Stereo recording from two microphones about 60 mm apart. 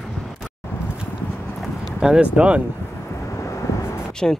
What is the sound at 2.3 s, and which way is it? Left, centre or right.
Speech, centre.